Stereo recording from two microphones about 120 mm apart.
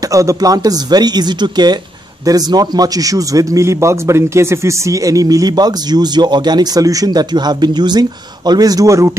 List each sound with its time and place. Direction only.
0.1 s a man's voice: 25° right (ahead or behind)